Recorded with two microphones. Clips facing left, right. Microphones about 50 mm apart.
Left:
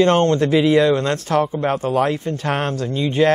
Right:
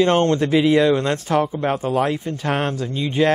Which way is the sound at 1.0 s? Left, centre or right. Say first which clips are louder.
Left 1 dB; centre.